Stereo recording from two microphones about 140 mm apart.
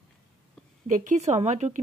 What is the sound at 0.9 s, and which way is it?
Speech, 60° right (ahead or behind).